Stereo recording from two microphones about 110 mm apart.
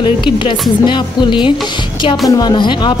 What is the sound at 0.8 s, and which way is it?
A woman's voice, 45° left (ahead or behind).